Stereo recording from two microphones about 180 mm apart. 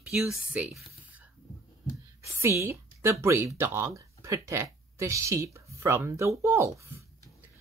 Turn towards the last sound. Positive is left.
turn(degrees=-15)  # may be behind; listen again after turning